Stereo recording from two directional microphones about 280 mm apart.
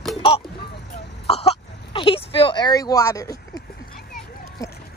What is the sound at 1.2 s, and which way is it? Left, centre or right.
Speech, left.